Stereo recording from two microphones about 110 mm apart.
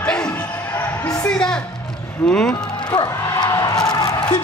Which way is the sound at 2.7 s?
40° left (ahead or behind).